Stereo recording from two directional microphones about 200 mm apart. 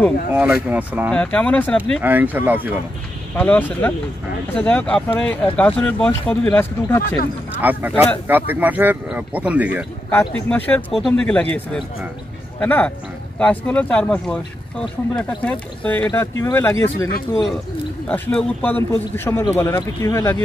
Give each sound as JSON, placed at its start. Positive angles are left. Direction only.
{"t": 0.3, "sound": "speech", "side_deg": -10}
{"t": 1.1, "sound": "speech", "side_deg": 5}
{"t": 1.9, "sound": "speech", "side_deg": -5}
{"t": 3.3, "sound": "speech", "side_deg": 10}
{"t": 7.5, "sound": "speech", "side_deg": -10}
{"t": 10.1, "sound": "speech", "side_deg": 10}
{"t": 18.0, "sound": "speech", "side_deg": 5}